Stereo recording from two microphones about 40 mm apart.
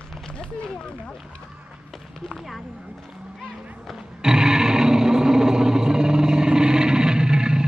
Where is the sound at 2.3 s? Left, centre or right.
Centre.